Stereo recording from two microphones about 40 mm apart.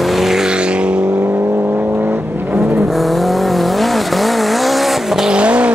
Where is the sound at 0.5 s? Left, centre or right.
Right.